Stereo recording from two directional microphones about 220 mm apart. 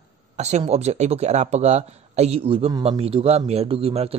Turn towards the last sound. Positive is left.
turn(degrees=-25)  # may be behind; listen again after turning